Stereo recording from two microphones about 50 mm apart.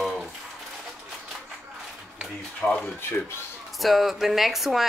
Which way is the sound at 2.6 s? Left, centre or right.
Centre.